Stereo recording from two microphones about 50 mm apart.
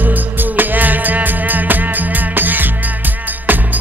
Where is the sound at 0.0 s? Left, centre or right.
Right.